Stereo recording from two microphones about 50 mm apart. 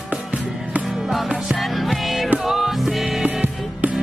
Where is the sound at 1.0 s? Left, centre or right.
Centre.